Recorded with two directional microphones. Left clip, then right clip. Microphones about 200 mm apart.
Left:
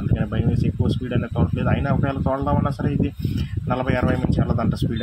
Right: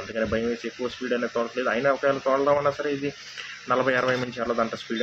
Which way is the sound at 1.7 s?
30° left (ahead or behind).